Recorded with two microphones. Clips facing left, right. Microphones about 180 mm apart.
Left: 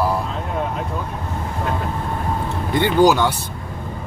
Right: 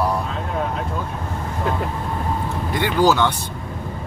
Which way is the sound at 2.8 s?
15° left (ahead or behind).